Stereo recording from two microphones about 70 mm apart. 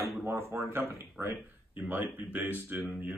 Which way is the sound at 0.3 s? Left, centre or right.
Right.